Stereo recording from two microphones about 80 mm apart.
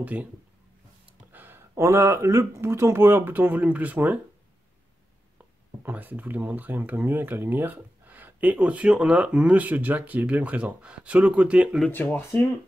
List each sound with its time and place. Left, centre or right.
0.0 s speech: centre
1.3 s a sound: right
1.8 s speech: right
5.8 s speech: right
11.9 s speech: left